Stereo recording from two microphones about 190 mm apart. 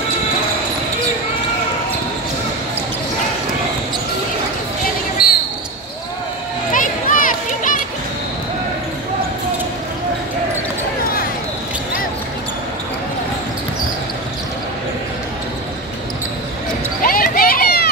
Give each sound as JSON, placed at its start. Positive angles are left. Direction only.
{"t": 5.2, "sound": "basketball bounce", "side_deg": 0}
{"t": 6.7, "sound": "a sound", "side_deg": 45}
{"t": 17.0, "sound": "clip-clop", "side_deg": 50}